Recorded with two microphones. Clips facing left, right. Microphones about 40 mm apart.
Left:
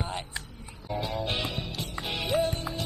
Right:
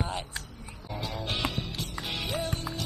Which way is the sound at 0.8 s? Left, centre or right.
Centre.